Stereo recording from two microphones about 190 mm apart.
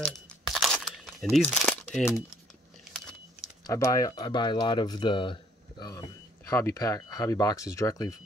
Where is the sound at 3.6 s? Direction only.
15° left (ahead or behind).